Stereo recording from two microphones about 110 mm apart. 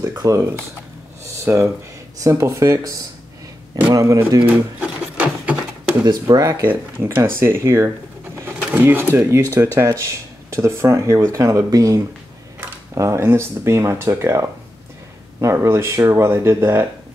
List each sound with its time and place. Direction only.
0.0 s speech: 25° right (ahead or behind)
4.5 s a sound: 10° right (ahead or behind)
6.0 s speech: 35° right (ahead or behind)
6.6 s speech: 15° right (ahead or behind)
8.5 s a sound: 20° right (ahead or behind)
9.1 s speech: 25° right (ahead or behind)